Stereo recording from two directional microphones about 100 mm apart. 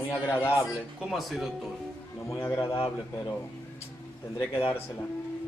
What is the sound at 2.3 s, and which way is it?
Speech, 30° left (ahead or behind).